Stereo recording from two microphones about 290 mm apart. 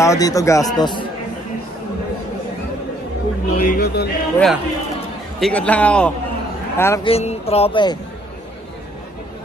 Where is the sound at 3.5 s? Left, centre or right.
Left.